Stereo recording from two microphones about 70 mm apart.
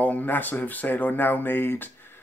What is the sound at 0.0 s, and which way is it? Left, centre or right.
Speech, left.